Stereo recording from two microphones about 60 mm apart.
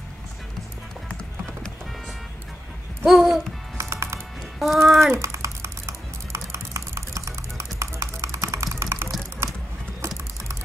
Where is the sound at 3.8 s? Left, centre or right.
Right.